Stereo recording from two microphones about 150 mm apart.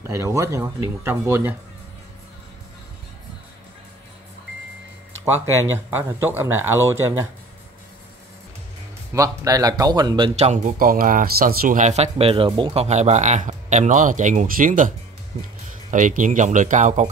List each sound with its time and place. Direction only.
0.0 s speech: 20° right (ahead or behind)
5.9 s speech: 15° right (ahead or behind)
9.1 s speech: 20° right (ahead or behind)
10.5 s speech: 60° right (ahead or behind)
15.9 s speech: 60° right (ahead or behind)